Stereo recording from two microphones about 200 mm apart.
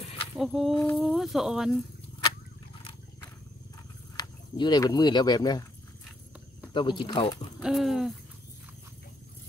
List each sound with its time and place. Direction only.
0.4 s speech: centre (ahead or behind)
2.8 s wild animals: 25° left (ahead or behind)
4.2 s speech: 20° left (ahead or behind)
6.7 s speech: 25° left (ahead or behind)
7.6 s speech: centre (ahead or behind)